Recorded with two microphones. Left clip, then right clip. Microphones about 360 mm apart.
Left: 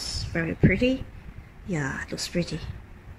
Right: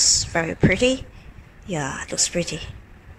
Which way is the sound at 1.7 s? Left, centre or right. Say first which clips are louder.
Right 3 dB; centre.